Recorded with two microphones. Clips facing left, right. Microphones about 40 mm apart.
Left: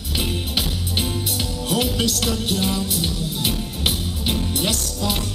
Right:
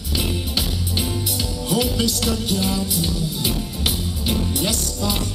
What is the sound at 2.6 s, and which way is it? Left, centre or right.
Music, centre.